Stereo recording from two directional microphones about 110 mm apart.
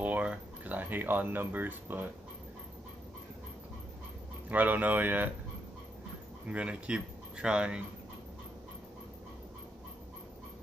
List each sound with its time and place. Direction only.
0.0 s a sound: 15° right (ahead or behind)
4.5 s speech: 15° right (ahead or behind)
6.4 s speech: 10° right (ahead or behind)